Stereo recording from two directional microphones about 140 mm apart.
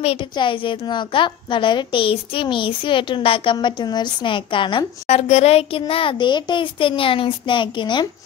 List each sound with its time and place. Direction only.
0.0 s a woman's voice: 40° left (ahead or behind)
5.1 s a woman's voice: 50° left (ahead or behind); by 8.1 s 35° left (ahead or behind)